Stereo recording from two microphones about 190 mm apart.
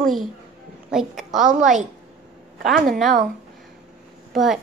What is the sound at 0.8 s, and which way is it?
Speech, centre (ahead or behind).